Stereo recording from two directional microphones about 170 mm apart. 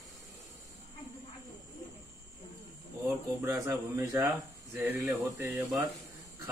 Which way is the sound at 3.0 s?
15° right (ahead or behind).